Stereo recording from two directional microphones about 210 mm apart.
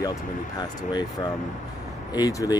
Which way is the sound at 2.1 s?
15° left (ahead or behind).